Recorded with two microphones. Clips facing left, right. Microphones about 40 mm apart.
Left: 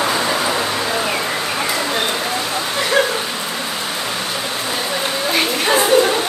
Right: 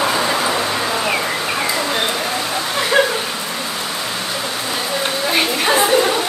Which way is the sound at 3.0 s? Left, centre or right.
Centre.